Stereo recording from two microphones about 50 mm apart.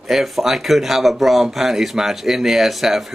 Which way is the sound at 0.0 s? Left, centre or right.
Centre.